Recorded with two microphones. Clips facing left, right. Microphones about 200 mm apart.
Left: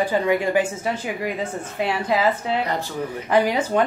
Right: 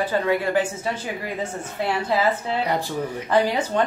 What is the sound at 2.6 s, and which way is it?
Speech, 15° right (ahead or behind).